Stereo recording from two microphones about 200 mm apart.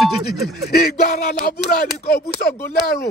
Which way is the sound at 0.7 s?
50° left (ahead or behind).